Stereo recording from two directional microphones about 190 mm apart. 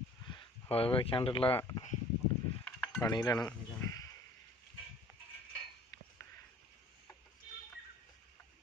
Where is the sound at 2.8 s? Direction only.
15° left (ahead or behind).